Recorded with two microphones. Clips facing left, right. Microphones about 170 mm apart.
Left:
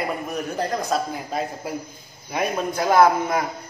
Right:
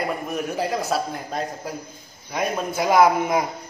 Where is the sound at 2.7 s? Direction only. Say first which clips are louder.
Even; 10° right (ahead or behind).